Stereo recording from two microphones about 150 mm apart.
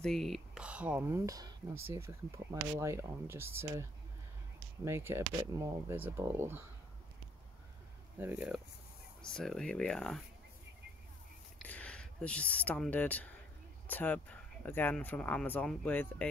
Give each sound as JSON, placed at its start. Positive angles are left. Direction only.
{"t": 0.0, "sound": "speech", "side_deg": 0}
{"t": 1.2, "sound": "speech", "side_deg": -25}
{"t": 4.8, "sound": "speech", "side_deg": -15}
{"t": 8.2, "sound": "speech", "side_deg": -10}
{"t": 9.2, "sound": "speech", "side_deg": 5}
{"t": 11.5, "sound": "speech", "side_deg": 10}